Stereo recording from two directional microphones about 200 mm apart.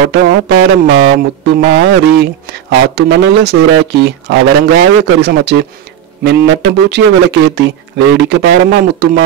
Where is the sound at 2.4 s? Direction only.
55° right (ahead or behind).